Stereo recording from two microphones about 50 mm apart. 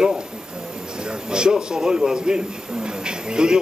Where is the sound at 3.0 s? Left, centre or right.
Centre.